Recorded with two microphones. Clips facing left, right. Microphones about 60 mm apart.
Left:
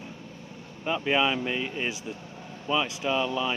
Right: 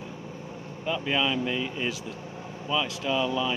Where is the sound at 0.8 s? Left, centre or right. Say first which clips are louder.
Left 2 dB; centre.